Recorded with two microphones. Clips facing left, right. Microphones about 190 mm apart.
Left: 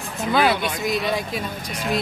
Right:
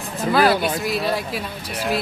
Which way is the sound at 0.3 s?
Centre (ahead or behind).